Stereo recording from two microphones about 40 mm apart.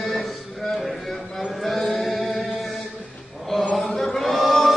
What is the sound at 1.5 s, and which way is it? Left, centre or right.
Chant, centre.